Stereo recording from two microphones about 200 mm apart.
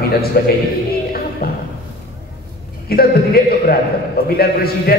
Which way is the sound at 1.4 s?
50° left (ahead or behind).